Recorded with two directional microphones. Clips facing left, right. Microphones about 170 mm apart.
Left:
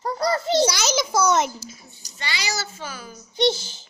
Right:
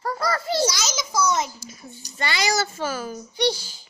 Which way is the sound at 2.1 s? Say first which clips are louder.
Right 6 dB; 55° right (ahead or behind).